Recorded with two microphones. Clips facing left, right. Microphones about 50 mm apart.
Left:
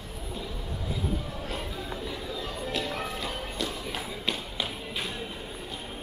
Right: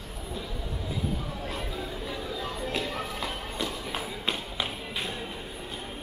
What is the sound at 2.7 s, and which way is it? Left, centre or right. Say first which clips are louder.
Music: left 2 dB; right.